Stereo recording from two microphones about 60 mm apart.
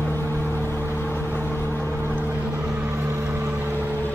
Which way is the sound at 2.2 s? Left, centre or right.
Right.